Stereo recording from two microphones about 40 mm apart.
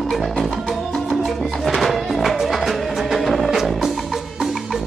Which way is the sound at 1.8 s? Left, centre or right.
Centre.